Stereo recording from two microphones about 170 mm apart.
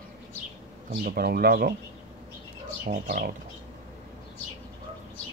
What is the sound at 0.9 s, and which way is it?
Speech, 60° right (ahead or behind).